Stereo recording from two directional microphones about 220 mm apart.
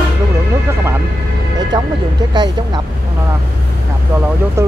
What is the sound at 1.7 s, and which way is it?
Speech, 20° right (ahead or behind).